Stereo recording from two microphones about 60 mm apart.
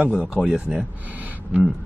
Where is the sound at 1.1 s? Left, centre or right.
Right.